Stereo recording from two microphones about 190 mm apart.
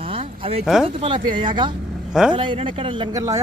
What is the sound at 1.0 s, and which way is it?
Speech, 25° right (ahead or behind).